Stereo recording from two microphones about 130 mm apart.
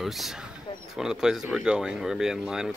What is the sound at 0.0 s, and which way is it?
Speech, centre (ahead or behind).